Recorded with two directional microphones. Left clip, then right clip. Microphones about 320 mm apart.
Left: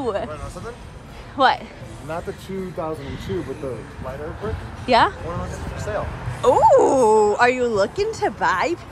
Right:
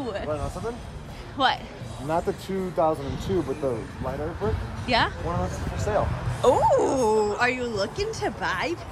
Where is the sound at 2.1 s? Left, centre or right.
Right.